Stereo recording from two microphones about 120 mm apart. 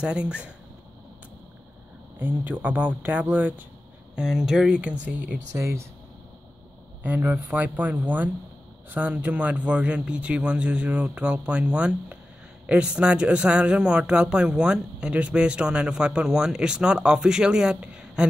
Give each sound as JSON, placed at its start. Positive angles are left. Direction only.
{"t": 0.0, "sound": "a man's voice", "side_deg": -10}
{"t": 2.1, "sound": "a man's voice", "side_deg": -15}
{"t": 5.5, "sound": "speech", "side_deg": -25}
{"t": 7.0, "sound": "a man's voice", "side_deg": -15}